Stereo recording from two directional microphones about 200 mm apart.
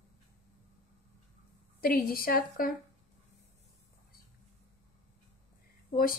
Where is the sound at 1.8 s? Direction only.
45° left (ahead or behind).